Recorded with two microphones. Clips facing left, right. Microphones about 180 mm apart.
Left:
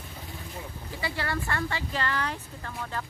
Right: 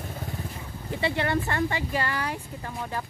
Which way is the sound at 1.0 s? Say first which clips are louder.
Right 6 dB; 25° right (ahead or behind).